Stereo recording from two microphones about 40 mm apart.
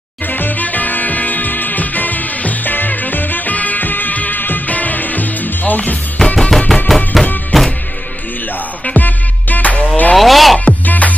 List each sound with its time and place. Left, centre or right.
0.3 s music: left
6.1 s music: left
7.1 s music: centre
8.9 s music: left
10.1 s zipper: centre
10.6 s music: left